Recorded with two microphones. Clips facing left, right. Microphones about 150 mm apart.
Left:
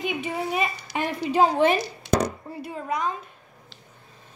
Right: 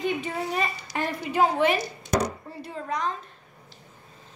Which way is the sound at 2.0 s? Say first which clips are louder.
Left 2 dB; 90° left.